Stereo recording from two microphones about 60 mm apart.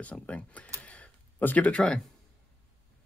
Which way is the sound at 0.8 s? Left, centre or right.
Left.